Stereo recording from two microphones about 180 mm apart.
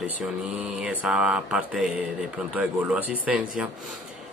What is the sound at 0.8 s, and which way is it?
Speech, 5° right (ahead or behind).